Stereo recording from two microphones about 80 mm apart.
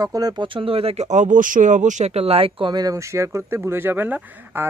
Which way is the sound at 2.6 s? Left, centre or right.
Right.